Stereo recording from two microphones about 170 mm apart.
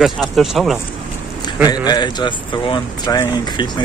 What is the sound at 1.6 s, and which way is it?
Speech, 25° left (ahead or behind).